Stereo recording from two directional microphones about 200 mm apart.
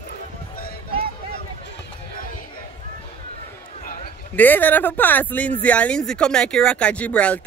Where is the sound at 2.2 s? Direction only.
45° left (ahead or behind).